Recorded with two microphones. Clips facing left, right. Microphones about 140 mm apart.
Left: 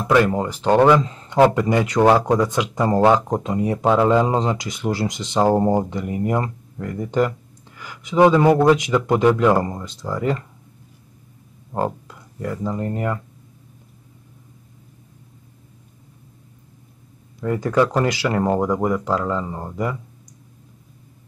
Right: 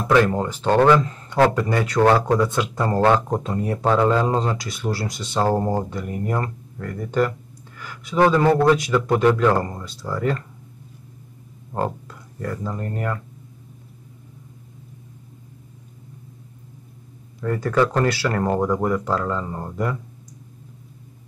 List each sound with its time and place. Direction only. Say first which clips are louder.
0.1 s speech: left 1 dB; 10° left (ahead or behind)
11.7 s speech: left 2 dB; 10° left (ahead or behind)
17.4 s speech: left 1 dB; 15° left (ahead or behind)